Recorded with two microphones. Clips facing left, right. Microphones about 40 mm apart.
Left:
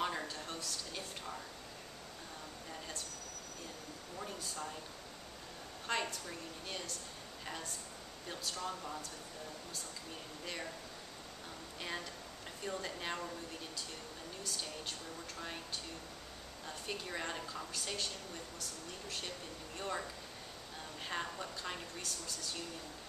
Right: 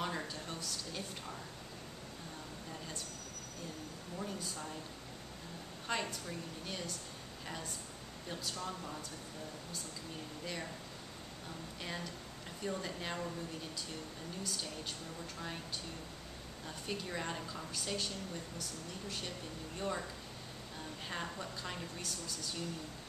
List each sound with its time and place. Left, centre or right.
0.0 s a sound: centre
4.2 s a sound: centre
5.9 s a woman's voice: centre
8.3 s a woman's voice: centre
10.4 s a woman's voice: centre
12.6 s a woman's voice: centre
16.6 s a woman's voice: centre
19.8 s a woman's voice: centre
21.1 s a woman's voice: centre